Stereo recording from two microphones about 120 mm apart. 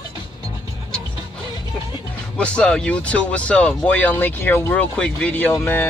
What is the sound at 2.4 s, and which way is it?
Speech, 10° left (ahead or behind).